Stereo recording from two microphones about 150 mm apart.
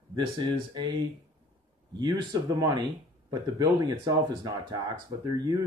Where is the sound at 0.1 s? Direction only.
30° right (ahead or behind).